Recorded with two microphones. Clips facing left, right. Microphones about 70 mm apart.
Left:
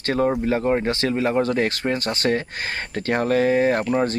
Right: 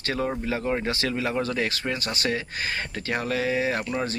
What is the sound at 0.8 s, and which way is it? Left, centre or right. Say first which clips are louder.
A man's voice: left 5 dB; left.